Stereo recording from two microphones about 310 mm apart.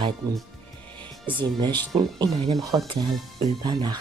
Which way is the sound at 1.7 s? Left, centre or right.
Centre.